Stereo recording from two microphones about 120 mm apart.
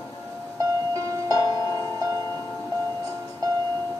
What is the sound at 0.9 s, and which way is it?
Music, 30° right (ahead or behind).